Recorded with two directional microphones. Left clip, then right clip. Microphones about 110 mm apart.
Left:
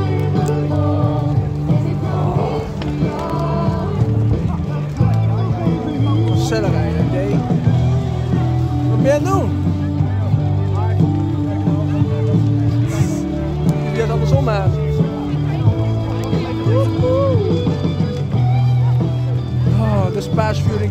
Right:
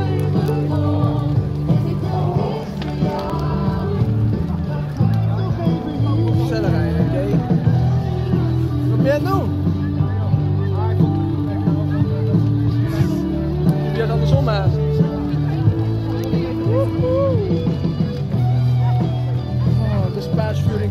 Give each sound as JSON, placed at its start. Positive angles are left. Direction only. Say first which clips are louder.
{"t": 9.0, "sound": "music", "louder": "left 3 dB", "side_deg": 35}
{"t": 13.9, "sound": "music", "louder": "left 3 dB", "side_deg": 30}